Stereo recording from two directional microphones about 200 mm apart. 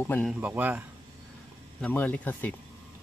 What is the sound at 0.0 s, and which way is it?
Speech, 10° left (ahead or behind).